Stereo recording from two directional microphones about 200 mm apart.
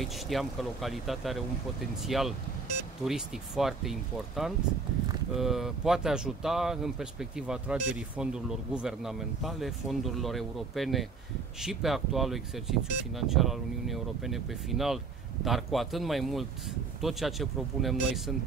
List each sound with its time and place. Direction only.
0.0 s speech: centre (ahead or behind)